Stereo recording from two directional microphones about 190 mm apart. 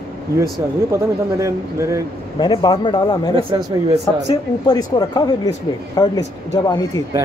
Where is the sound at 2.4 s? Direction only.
25° left (ahead or behind).